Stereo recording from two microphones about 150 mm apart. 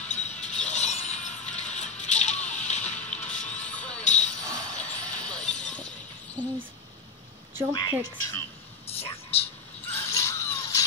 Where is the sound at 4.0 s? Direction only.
50° left (ahead or behind).